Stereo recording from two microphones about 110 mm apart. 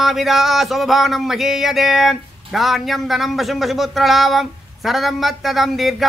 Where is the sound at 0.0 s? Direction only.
Centre (ahead or behind).